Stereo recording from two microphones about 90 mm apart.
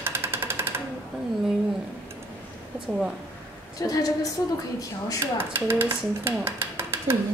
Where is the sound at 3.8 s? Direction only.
40° left (ahead or behind).